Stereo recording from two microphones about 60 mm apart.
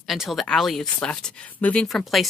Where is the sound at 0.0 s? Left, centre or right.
Centre.